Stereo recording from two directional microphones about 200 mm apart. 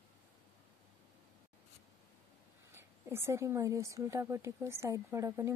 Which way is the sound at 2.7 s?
10° right (ahead or behind).